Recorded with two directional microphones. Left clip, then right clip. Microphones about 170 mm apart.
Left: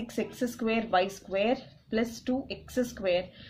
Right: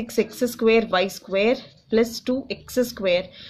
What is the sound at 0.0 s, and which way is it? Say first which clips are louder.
Speech: right 10 dB; 45° right (ahead or behind).